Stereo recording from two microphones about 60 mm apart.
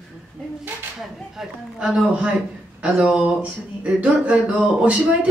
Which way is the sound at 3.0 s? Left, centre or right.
Centre.